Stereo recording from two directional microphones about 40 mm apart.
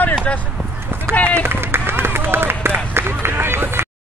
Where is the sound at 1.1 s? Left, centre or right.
Right.